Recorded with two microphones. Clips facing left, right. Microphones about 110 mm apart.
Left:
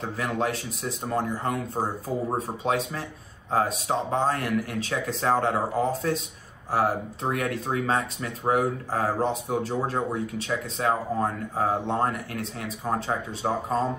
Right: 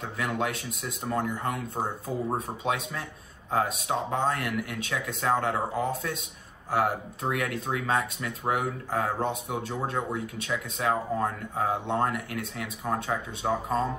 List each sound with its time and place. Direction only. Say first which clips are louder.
0.2 s speech: left 2 dB; 30° left (ahead or behind)
1.8 s speech: left 3 dB; 5° left (ahead or behind)
2.3 s speech: left 3 dB; 30° left (ahead or behind)